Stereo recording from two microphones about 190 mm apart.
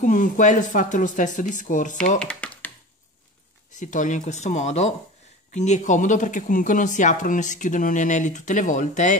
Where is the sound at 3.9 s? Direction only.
40° left (ahead or behind).